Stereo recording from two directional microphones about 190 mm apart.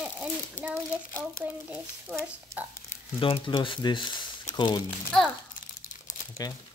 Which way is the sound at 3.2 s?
25° left (ahead or behind).